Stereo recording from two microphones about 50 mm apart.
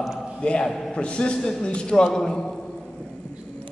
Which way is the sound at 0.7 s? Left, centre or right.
Centre.